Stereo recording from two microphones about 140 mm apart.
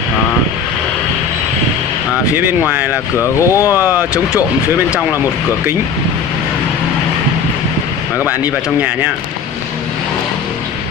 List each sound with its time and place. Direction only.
3.2 s speech: 20° left (ahead or behind)
3.7 s speech: 15° right (ahead or behind)
8.3 s speech: 10° right (ahead or behind)